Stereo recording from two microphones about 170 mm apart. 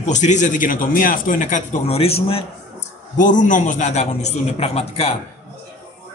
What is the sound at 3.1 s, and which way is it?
A man's voice, 50° left (ahead or behind).